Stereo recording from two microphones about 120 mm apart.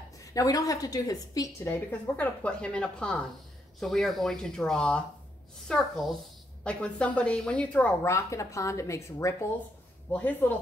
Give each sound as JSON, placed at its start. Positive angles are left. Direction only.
{"t": 0.2, "sound": "a woman's voice", "side_deg": 30}
{"t": 1.7, "sound": "a woman's voice", "side_deg": 15}
{"t": 8.0, "sound": "a woman's voice", "side_deg": 25}